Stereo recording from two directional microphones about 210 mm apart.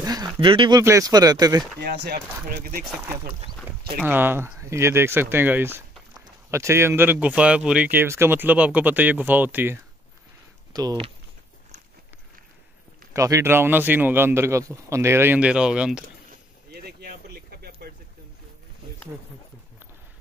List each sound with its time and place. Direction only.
0.0 s speech: 20° right (ahead or behind)
1.8 s speech: 50° right (ahead or behind)
4.0 s speech: 10° right (ahead or behind)
13.1 s speech: 15° right (ahead or behind)
16.7 s a sound: 45° right (ahead or behind)